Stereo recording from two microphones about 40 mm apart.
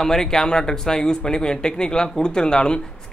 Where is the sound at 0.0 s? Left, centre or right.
Centre.